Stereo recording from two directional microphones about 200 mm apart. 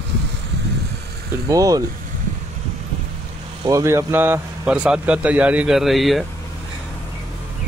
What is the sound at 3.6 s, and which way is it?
Speech, 15° right (ahead or behind).